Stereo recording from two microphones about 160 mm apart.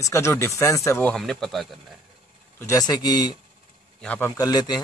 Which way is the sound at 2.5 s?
20° left (ahead or behind).